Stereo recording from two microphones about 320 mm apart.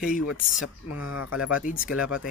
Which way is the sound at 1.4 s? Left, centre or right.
Left.